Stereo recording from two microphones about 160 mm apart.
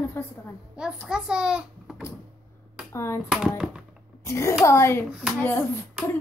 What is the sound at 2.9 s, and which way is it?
Speech, 15° left (ahead or behind).